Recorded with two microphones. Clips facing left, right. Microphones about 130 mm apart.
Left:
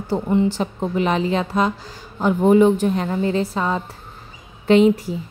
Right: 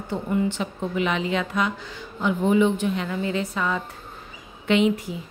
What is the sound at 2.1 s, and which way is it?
Speech, 45° left (ahead or behind).